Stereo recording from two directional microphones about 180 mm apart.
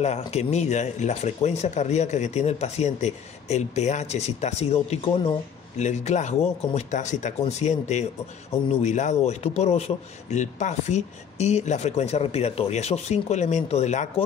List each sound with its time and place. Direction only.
0.0 s a man's voice: 35° left (ahead or behind)